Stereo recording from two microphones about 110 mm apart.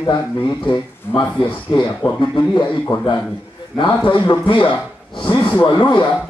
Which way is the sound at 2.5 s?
45° left (ahead or behind).